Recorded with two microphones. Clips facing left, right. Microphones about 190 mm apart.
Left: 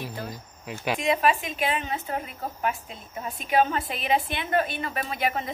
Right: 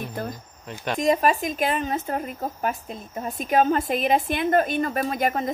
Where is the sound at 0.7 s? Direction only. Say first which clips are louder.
Left 1 dB; 5° left (ahead or behind).